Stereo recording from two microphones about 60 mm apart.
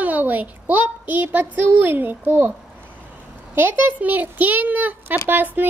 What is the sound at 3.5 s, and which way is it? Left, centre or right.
A child's voice, right.